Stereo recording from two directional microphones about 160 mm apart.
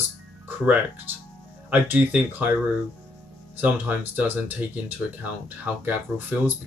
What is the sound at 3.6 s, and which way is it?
Speech, 10° right (ahead or behind).